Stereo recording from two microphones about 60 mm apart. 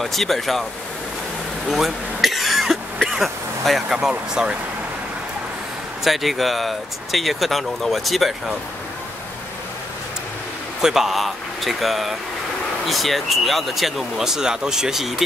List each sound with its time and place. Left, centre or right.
0.0 s speech: centre
1.7 s speech: centre
6.0 s speech: centre
10.8 s speech: centre